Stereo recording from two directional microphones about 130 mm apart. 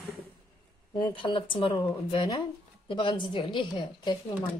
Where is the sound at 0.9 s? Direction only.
40° left (ahead or behind).